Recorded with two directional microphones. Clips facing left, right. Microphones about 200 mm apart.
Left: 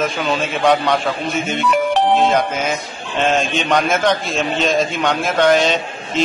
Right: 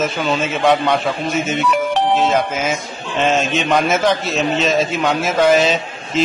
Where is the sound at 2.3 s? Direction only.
5° right (ahead or behind).